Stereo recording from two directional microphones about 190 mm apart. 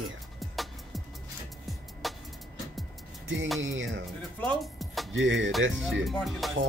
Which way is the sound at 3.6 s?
90° right.